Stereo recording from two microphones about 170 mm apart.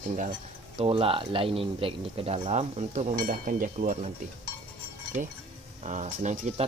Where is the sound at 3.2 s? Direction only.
50° right (ahead or behind).